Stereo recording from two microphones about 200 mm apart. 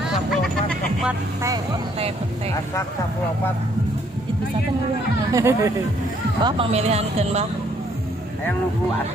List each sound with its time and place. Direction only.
0.3 s music: centre (ahead or behind)
5.3 s speech: 15° right (ahead or behind)
6.4 s speech: 30° right (ahead or behind)